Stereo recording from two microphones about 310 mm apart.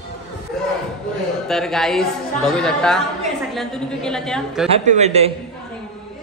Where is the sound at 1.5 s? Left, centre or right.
Centre.